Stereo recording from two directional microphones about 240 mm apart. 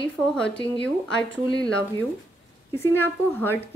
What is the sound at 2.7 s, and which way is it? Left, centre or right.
Speech, centre.